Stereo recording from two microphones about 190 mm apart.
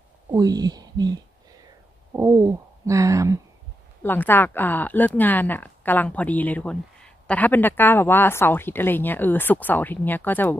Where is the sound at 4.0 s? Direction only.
10° left (ahead or behind).